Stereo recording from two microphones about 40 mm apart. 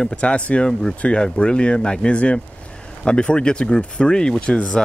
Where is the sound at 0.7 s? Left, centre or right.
Centre.